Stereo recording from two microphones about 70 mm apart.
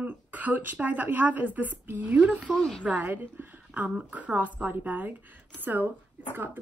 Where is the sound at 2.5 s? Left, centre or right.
Centre.